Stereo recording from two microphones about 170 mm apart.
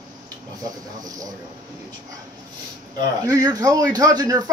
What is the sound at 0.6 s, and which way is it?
Speech, 20° right (ahead or behind).